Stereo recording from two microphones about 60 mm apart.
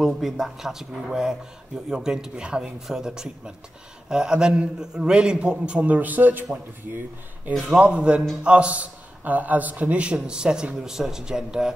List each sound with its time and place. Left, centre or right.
0.0 s a man's voice: centre; by 6.4 s right
7.8 s a man's voice: centre